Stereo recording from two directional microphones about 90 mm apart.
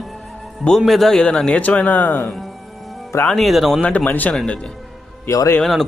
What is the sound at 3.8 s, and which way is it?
Speech, 15° left (ahead or behind).